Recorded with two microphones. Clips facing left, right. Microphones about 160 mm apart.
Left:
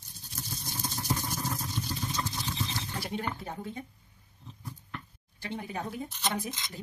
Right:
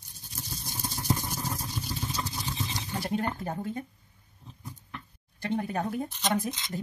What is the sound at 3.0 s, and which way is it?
Speech, 45° right (ahead or behind).